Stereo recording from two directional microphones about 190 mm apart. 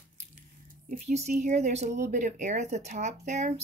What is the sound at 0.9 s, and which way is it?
Speech, 35° right (ahead or behind).